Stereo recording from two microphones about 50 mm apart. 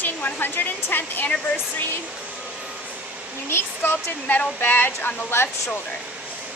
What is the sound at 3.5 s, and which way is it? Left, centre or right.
Speech, left.